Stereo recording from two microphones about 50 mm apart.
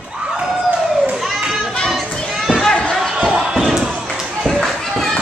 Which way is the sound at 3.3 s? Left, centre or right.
Centre.